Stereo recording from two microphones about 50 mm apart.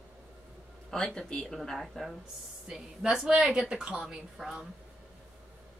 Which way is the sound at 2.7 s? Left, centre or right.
Centre.